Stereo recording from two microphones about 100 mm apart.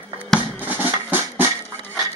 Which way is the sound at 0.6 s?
20° right (ahead or behind).